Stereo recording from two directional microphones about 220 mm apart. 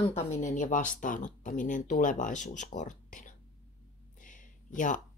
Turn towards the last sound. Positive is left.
turn(degrees=35)  # may be behind; listen again after turning